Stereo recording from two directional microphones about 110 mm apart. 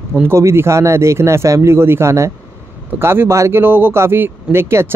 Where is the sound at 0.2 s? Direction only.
25° right (ahead or behind).